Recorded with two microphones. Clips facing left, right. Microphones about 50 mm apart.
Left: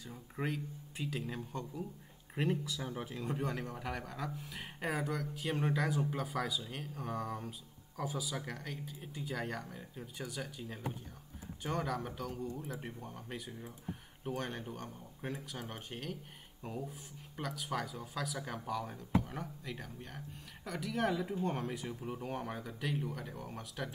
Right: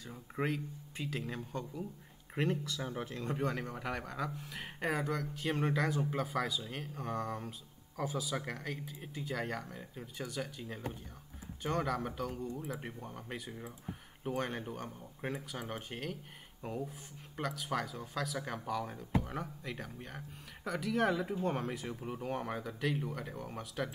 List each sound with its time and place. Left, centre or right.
0.0 s speech: centre
2.8 s speech: centre